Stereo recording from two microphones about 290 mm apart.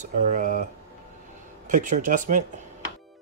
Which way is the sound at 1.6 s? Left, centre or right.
Right.